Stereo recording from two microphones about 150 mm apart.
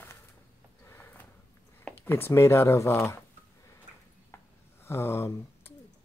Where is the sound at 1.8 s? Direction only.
15° left (ahead or behind).